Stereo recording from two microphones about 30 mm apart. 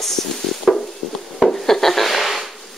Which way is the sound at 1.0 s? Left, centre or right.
Centre.